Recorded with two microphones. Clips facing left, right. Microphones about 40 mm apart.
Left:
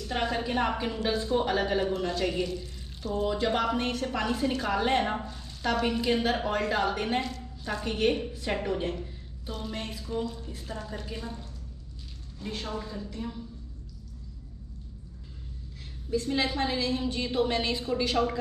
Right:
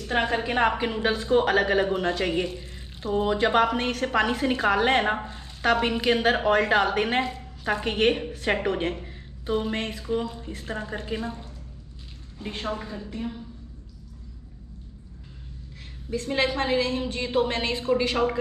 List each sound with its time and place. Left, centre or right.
0.0 s a woman's voice: right
5.6 s a woman's voice: right
7.2 s a sound: right
7.8 s a woman's voice: right
9.5 s a woman's voice: right
16.3 s a woman's voice: right